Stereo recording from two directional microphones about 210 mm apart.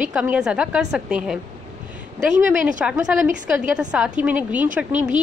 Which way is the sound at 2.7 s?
5° right (ahead or behind).